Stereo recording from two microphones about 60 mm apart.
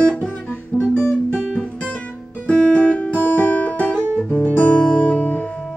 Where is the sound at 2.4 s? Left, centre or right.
Left.